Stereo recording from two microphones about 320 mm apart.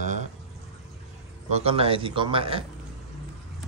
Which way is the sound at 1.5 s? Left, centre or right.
Centre.